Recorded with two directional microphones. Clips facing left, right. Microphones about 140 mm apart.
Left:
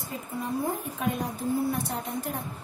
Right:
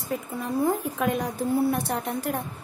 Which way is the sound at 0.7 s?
85° right.